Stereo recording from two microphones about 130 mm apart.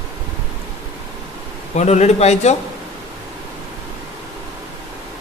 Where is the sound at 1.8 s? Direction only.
60° left (ahead or behind).